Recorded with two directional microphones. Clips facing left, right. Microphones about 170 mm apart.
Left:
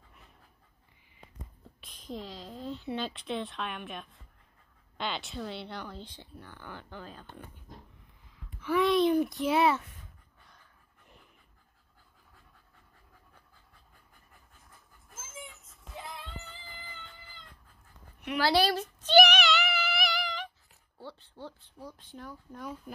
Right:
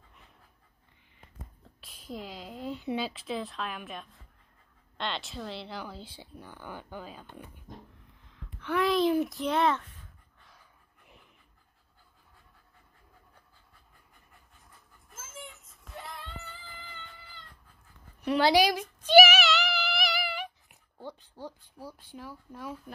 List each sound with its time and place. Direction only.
1.8 s speech: 5° right (ahead or behind)
3.1 s speech: centre (ahead or behind)
8.3 s speech: 5° left (ahead or behind)
16.0 s music: centre (ahead or behind)
18.4 s a sound: 15° right (ahead or behind)